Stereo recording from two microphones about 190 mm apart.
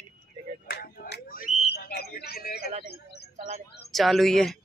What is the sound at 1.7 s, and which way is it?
Speech, 55° left (ahead or behind).